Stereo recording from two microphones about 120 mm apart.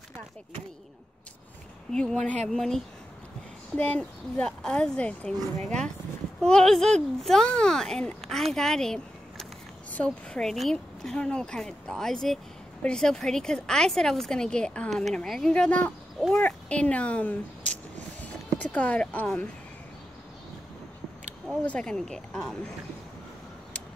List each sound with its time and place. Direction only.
1.9 s a woman's voice: 5° left (ahead or behind)
21.6 s a woman's voice: 5° left (ahead or behind)